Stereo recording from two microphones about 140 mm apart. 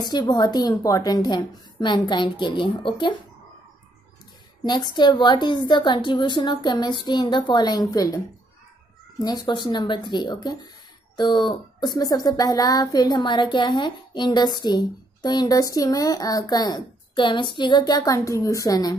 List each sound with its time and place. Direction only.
0.0 s speech: 30° left (ahead or behind)
4.6 s speech: 30° left (ahead or behind)
9.2 s speech: 30° left (ahead or behind)